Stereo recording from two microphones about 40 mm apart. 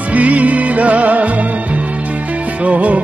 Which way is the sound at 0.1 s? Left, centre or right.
Right.